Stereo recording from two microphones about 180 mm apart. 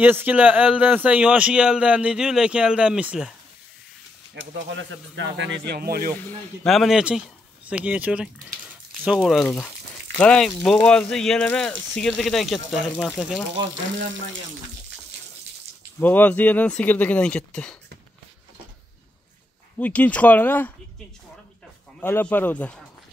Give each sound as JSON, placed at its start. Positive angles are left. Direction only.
{"t": 0.0, "sound": "a man's voice", "side_deg": -10}
{"t": 4.6, "sound": "speech", "side_deg": -80}
{"t": 6.6, "sound": "a man's voice", "side_deg": 0}
{"t": 16.0, "sound": "speech", "side_deg": 10}
{"t": 19.8, "sound": "speech", "side_deg": 10}
{"t": 22.0, "sound": "speech", "side_deg": 10}